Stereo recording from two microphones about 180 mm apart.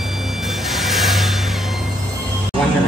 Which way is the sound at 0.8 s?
Centre (ahead or behind).